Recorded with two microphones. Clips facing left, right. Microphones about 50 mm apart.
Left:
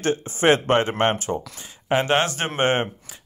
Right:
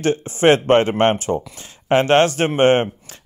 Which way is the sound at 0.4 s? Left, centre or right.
Right.